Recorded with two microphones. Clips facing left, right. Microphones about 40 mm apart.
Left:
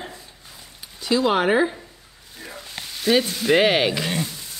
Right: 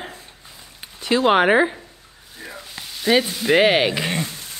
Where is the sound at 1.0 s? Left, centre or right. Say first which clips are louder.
Right 3 dB; right.